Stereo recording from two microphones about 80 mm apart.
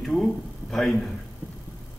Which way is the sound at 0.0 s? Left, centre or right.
Centre.